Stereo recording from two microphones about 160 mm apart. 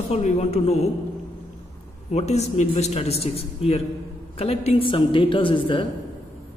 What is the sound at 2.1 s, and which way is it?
A man's voice, 45° left (ahead or behind).